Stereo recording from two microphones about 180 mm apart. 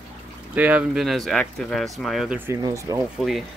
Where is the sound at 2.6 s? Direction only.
20° right (ahead or behind).